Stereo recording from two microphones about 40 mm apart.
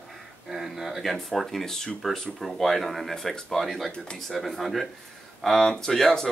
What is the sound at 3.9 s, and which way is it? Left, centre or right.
Speech, left.